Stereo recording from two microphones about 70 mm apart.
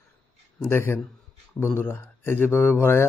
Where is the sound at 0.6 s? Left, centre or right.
Left.